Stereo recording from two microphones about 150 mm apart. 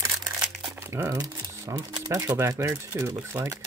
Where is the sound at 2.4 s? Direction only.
20° right (ahead or behind).